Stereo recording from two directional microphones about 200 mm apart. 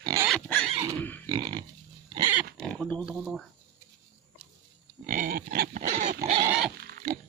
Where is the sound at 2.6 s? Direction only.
5° left (ahead or behind).